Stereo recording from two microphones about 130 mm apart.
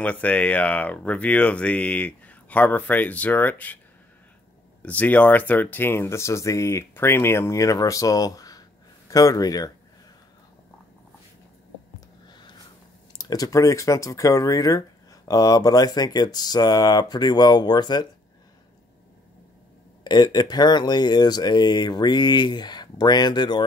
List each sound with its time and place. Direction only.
0.0 s speech: 10° left (ahead or behind)
4.8 s speech: 10° left (ahead or behind); by 9.7 s 30° left (ahead or behind)
12.3 s a sound: 35° left (ahead or behind)
13.1 s speech: 30° left (ahead or behind)
20.0 s speech: 35° left (ahead or behind)